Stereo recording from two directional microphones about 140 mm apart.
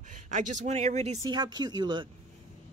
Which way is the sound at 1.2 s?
30° right (ahead or behind).